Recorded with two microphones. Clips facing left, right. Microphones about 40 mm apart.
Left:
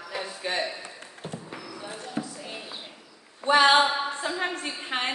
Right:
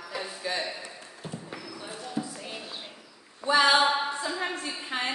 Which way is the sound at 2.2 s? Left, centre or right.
Left.